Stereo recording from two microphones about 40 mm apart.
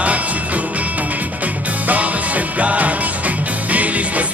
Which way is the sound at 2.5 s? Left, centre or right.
Right.